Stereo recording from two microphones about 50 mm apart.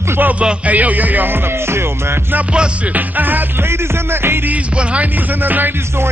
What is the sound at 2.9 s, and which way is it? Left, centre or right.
Speech, right.